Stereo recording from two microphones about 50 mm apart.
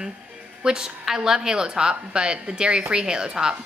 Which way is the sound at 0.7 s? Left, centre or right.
Centre.